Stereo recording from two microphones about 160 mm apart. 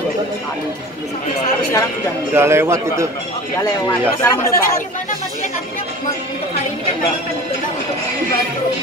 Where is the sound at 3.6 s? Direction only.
15° left (ahead or behind).